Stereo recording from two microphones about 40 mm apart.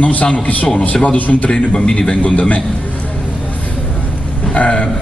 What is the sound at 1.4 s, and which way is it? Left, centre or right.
Speech, left.